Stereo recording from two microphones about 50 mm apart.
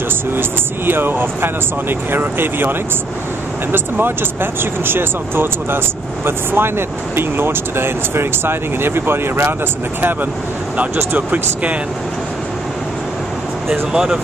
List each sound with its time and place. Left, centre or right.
0.3 s speech: right
3.7 s speech: right
11.1 s speech: right
13.9 s speech: centre